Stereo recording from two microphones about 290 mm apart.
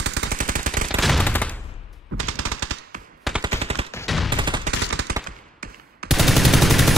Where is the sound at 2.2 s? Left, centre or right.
Right.